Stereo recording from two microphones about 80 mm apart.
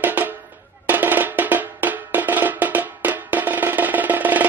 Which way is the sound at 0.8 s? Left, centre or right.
Right.